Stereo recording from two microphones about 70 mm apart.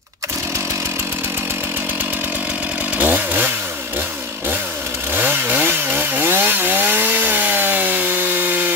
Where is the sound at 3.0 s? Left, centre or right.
Right.